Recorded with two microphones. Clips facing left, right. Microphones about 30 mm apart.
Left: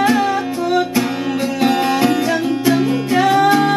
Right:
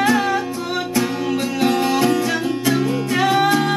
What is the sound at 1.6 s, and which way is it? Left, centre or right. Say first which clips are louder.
Music: left 2 dB; centre.